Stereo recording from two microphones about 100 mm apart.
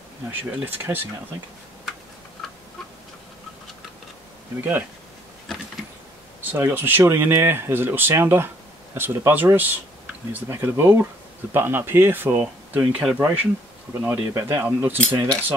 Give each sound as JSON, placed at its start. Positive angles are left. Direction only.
{"t": 0.3, "sound": "speech", "side_deg": -20}
{"t": 4.6, "sound": "speech", "side_deg": -20}
{"t": 6.4, "sound": "speech", "side_deg": -20}